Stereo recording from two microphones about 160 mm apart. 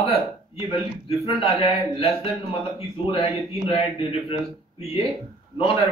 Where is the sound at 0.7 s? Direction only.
35° left (ahead or behind).